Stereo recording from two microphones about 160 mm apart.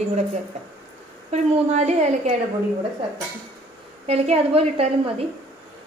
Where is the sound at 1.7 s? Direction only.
45° right (ahead or behind).